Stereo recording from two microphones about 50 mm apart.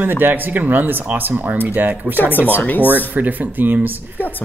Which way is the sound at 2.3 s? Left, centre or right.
Left.